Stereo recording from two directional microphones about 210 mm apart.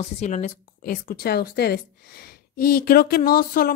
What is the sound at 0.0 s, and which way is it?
A woman's voice, 35° left (ahead or behind).